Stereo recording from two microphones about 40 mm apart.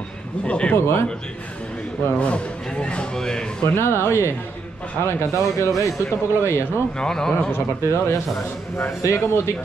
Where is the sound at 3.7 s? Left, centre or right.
Left.